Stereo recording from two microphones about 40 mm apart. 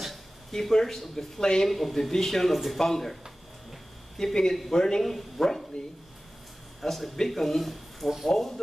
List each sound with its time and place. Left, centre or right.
0.5 s speech: centre
1.7 s a man's voice: centre
4.2 s speech: centre
6.8 s speech: centre